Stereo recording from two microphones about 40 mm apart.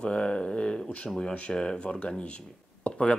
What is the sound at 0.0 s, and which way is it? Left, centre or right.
Speech, left.